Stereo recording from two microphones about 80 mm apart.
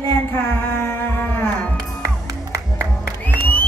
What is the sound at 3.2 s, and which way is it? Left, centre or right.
Music, left.